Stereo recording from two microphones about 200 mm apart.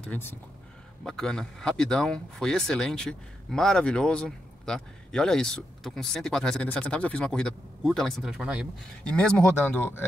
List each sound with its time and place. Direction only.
0.0 s speech: 10° left (ahead or behind)